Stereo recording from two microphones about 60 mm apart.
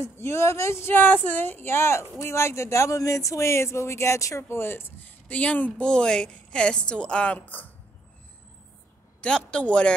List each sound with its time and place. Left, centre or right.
0.0 s speech: left
3.0 s speech: left
4.5 s speech: left
5.3 s a woman's voice: left
7.3 s speech: left
9.2 s a woman's voice: centre